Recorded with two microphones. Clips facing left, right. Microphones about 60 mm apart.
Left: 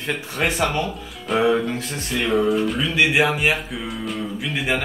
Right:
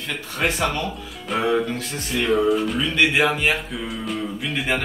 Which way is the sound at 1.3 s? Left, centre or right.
Centre.